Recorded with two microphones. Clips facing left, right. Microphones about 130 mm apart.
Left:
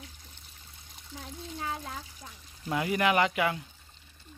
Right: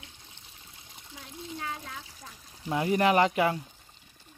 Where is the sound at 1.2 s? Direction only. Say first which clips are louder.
Even; 30° left (ahead or behind).